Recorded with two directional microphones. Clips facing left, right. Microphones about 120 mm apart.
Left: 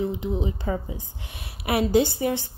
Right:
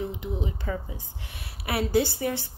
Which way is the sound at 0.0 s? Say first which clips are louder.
Left 5 dB; 25° left (ahead or behind).